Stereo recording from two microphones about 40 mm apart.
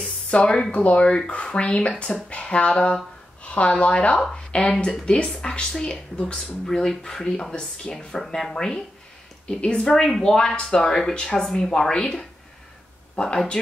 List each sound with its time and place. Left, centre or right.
0.0 s a sound: left
0.7 s a woman's voice: left; by 8.5 s centre
8.5 s speech: centre
10.0 s speech: centre
10.5 s speech: left
10.8 s speech: centre
13.2 s speech: left